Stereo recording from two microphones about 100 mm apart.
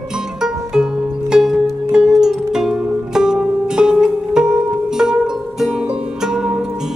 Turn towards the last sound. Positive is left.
turn(degrees=-5)  # may be behind; listen again after turning